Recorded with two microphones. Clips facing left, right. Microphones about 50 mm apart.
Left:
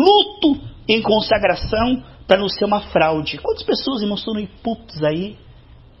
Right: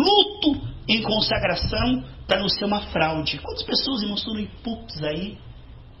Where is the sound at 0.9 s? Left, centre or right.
Centre.